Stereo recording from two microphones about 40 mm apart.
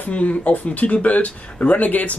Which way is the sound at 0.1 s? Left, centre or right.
Left.